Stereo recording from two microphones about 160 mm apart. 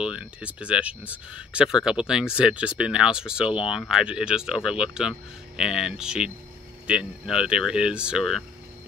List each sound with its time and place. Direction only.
0.0 s speech: 5° right (ahead or behind)